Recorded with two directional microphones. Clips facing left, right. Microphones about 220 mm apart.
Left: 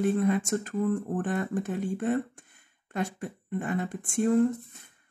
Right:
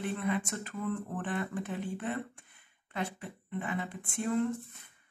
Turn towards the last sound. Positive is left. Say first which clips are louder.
# left 8 dB
turn(degrees=45)  # may be behind; listen again after turning